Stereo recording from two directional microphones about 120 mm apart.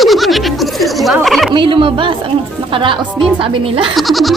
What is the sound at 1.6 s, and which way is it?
Speech, 45° right (ahead or behind).